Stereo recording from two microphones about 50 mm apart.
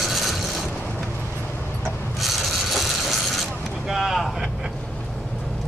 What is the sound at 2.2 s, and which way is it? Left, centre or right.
Vehicle, centre.